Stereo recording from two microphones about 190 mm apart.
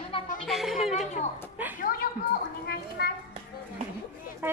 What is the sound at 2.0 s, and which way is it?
A woman's voice, 55° left (ahead or behind).